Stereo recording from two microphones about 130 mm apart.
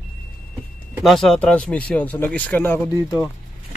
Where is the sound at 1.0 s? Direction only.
Centre (ahead or behind).